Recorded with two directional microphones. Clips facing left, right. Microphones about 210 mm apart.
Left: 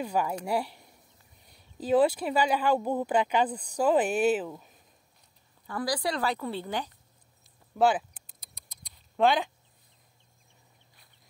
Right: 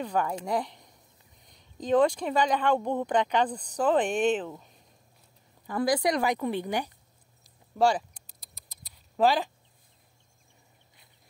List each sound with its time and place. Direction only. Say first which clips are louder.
0.0 s speech: even; 10° left (ahead or behind)
5.7 s speech: right 5 dB; 20° right (ahead or behind)
7.7 s a sound: even; 5° left (ahead or behind)